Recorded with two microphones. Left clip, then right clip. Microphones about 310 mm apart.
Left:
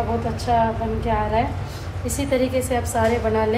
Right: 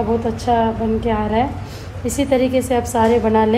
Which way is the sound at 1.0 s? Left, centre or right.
Right.